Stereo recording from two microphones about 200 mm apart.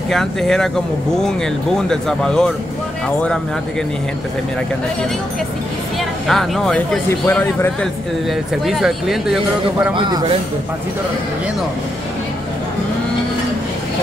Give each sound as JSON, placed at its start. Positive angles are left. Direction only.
{"t": 0.1, "sound": "speech", "side_deg": 0}
{"t": 6.2, "sound": "speech", "side_deg": 0}
{"t": 9.9, "sound": "a man's voice", "side_deg": -20}